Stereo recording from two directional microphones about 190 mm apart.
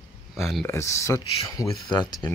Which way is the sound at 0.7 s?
15° left (ahead or behind).